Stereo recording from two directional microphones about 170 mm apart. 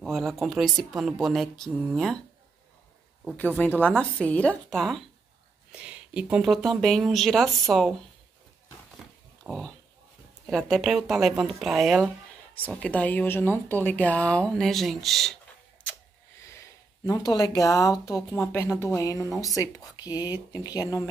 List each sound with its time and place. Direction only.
0.0 s speech: centre (ahead or behind)
3.3 s speech: 10° left (ahead or behind)
5.7 s a sound: 5° right (ahead or behind)
6.3 s speech: centre (ahead or behind)
9.4 s speech: 5° left (ahead or behind)
17.0 s speech: 20° left (ahead or behind)